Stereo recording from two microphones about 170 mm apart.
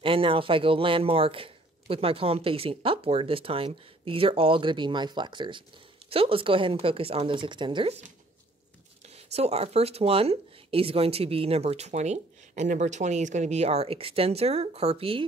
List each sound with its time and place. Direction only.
0.0 s speech: 30° right (ahead or behind)
9.1 s speech: 40° right (ahead or behind)